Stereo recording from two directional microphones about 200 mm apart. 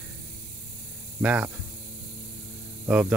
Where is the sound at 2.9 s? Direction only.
5° right (ahead or behind).